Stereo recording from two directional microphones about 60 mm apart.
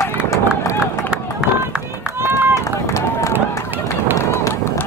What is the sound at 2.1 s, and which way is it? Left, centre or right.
Run, right.